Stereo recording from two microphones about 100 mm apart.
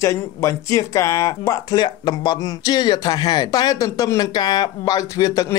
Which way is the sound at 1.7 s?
50° left (ahead or behind).